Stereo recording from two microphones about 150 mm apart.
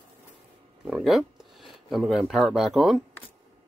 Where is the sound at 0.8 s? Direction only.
5° right (ahead or behind).